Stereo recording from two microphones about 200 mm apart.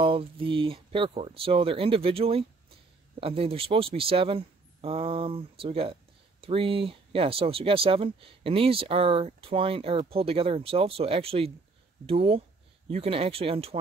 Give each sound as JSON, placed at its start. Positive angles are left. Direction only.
{"t": 0.0, "sound": "speech", "side_deg": -25}